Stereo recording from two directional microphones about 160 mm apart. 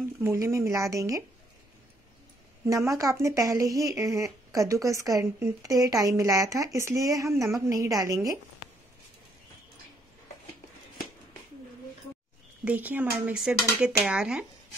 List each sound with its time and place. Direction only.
0.2 s speech: 15° right (ahead or behind)
2.6 s speech: 20° right (ahead or behind)
12.6 s speech: 10° right (ahead or behind)